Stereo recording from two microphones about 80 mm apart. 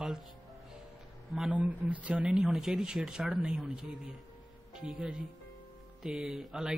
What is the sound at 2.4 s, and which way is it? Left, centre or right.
Speech, centre.